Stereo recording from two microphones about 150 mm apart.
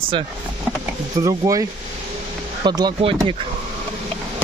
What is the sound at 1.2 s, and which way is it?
Speech, 25° right (ahead or behind).